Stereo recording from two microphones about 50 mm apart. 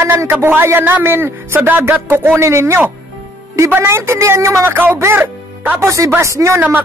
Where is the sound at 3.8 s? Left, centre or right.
Right.